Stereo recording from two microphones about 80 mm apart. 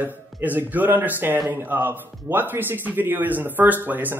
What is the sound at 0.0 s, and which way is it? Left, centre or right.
Speech, right.